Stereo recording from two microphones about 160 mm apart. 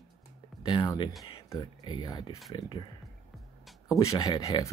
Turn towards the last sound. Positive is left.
turn(degrees=25)  # may be behind; listen again after turning